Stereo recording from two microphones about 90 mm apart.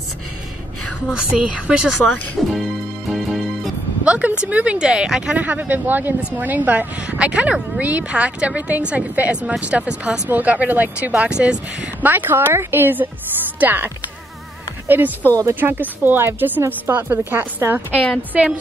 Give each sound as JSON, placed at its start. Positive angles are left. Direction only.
{"t": 1.1, "sound": "a woman's voice", "side_deg": -15}
{"t": 2.4, "sound": "speech", "side_deg": 0}
{"t": 3.1, "sound": "music", "side_deg": 0}
{"t": 4.0, "sound": "a woman's voice", "side_deg": -15}
{"t": 17.9, "sound": "a woman's voice", "side_deg": 15}